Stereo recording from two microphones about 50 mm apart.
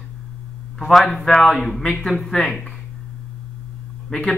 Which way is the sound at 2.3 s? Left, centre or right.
Left.